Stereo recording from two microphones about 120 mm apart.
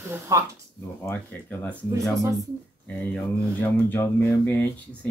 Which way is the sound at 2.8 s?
15° left (ahead or behind).